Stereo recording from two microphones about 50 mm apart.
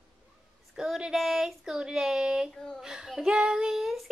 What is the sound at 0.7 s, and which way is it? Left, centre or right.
Child singing, centre.